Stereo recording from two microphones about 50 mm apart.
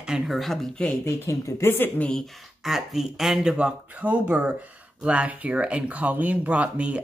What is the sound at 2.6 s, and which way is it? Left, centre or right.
Speech, centre.